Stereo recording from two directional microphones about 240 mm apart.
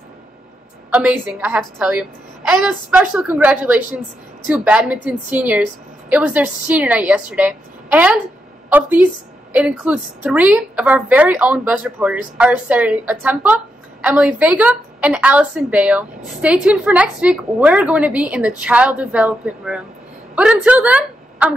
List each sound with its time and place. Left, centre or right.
0.9 s a woman's voice: centre